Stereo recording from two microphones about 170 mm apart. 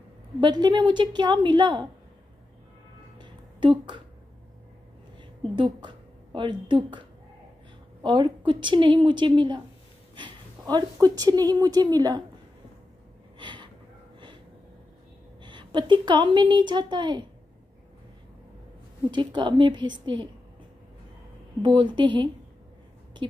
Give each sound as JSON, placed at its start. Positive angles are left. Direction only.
{"t": 0.4, "sound": "a woman's voice", "side_deg": -25}
{"t": 3.2, "sound": "a sound", "side_deg": -30}
{"t": 5.6, "sound": "a woman's voice", "side_deg": -30}
{"t": 10.6, "sound": "a woman's voice", "side_deg": -25}
{"t": 13.4, "sound": "a sound", "side_deg": -25}
{"t": 15.4, "sound": "a woman's voice", "side_deg": -25}
{"t": 19.0, "sound": "a woman's voice", "side_deg": -25}
{"t": 21.6, "sound": "a woman's voice", "side_deg": -25}